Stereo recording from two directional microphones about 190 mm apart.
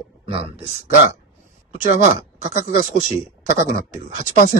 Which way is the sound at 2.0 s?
35° right (ahead or behind).